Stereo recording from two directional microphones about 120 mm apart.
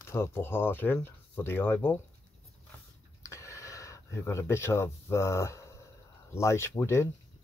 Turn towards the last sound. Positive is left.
turn(degrees=25)  # may be behind; listen again after turning